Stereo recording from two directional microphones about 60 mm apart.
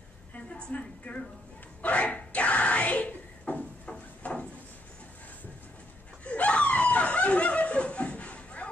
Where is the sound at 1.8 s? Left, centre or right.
Left.